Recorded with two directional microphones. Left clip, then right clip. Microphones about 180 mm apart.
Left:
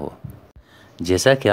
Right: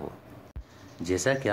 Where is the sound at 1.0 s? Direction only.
50° left (ahead or behind).